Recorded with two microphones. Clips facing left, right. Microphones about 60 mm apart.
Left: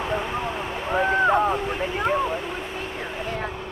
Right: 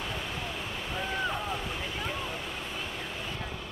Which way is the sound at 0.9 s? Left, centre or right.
Left.